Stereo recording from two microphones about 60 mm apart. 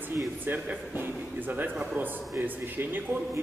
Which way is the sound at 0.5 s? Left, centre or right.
Right.